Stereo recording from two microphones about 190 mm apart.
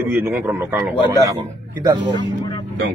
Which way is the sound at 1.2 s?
20° right (ahead or behind).